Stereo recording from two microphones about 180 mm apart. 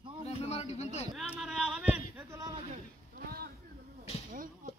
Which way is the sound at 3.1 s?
60° right (ahead or behind).